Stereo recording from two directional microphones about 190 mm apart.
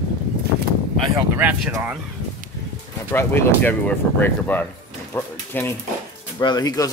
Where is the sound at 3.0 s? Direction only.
10° left (ahead or behind).